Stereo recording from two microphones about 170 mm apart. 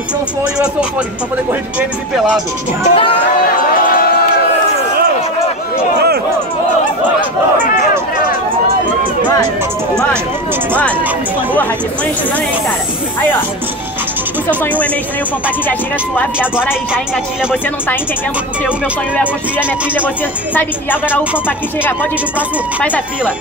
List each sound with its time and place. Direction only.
1.5 s speech: 10° right (ahead or behind)
2.9 s speech: 35° left (ahead or behind)
14.6 s a woman's voice: 10° left (ahead or behind)
16.9 s speech: 5° right (ahead or behind)
20.5 s a woman's voice: 10° left (ahead or behind)